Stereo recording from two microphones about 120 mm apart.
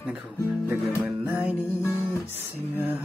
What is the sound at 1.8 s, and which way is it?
Music, 20° left (ahead or behind).